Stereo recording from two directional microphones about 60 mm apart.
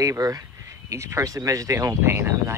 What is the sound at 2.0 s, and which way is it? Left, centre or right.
Speech, right.